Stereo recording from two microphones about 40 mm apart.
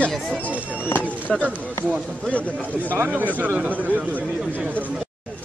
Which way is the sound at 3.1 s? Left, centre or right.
Right.